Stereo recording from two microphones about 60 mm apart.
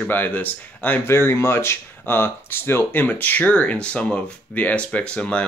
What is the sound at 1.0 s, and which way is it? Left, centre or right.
Speech, left.